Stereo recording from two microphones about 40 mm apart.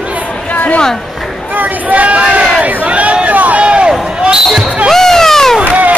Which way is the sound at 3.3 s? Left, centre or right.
Right.